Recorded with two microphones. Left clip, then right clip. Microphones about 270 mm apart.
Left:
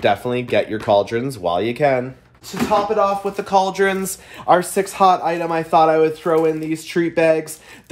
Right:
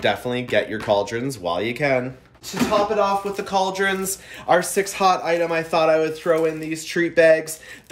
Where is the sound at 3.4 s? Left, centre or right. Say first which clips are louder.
Left 5 dB; centre.